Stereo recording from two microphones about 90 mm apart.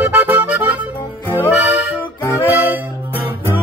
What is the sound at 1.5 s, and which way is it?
Music, 20° right (ahead or behind).